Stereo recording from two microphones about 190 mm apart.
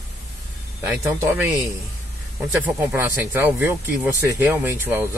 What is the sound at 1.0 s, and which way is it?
Speech, 15° right (ahead or behind).